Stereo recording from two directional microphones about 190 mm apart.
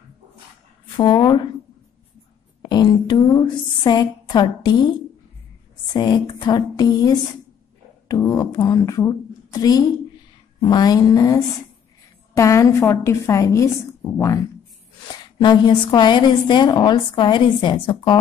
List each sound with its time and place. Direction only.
0.9 s a woman's voice: 25° left (ahead or behind)
2.6 s a woman's voice: 20° left (ahead or behind)
5.9 s a woman's voice: 25° left (ahead or behind)